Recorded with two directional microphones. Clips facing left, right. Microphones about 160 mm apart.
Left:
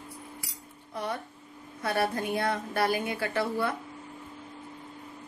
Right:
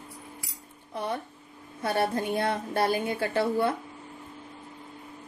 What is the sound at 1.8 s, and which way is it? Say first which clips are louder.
A woman's voice: right 2 dB; 25° right (ahead or behind).